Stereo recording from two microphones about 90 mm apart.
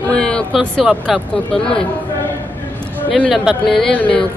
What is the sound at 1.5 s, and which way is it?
Speech, 10° left (ahead or behind).